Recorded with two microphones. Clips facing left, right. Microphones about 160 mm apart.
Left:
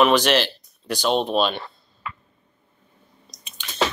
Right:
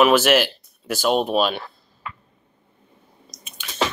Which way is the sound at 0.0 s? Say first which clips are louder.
Right 2 dB; 5° right (ahead or behind).